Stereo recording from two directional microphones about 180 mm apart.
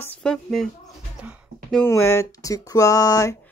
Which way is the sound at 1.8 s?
15° left (ahead or behind).